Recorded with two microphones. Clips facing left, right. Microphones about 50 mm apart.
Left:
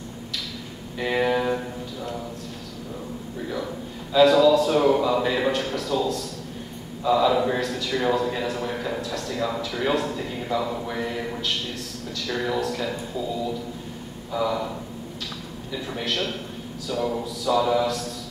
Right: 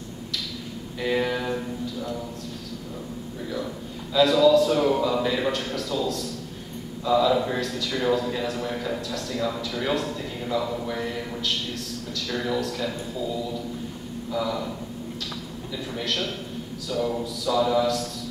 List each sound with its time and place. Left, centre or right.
0.9 s speech: centre
4.1 s a man's voice: centre
14.3 s a man's voice: centre
15.7 s a man's voice: centre